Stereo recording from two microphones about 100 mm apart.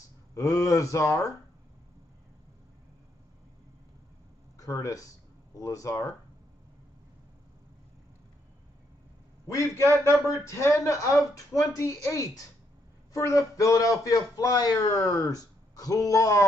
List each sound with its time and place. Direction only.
0.3 s a man's voice: 35° left (ahead or behind)
4.6 s a man's voice: 35° left (ahead or behind)
9.5 s a man's voice: 30° left (ahead or behind)